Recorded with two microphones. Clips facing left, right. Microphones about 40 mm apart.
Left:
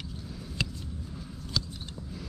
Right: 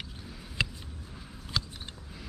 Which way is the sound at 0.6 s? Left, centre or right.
Centre.